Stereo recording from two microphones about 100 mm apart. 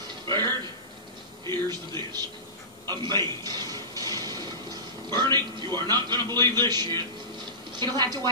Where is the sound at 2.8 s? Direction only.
45° right (ahead or behind).